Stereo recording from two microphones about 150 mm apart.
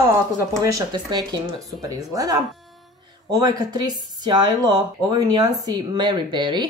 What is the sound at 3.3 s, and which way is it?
Speech, 25° right (ahead or behind).